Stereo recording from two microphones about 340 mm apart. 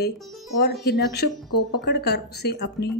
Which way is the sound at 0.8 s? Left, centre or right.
Left.